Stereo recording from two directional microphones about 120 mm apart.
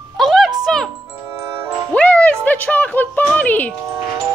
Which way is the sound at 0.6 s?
5° left (ahead or behind).